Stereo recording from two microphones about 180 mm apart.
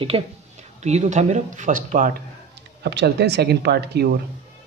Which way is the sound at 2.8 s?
65° right (ahead or behind).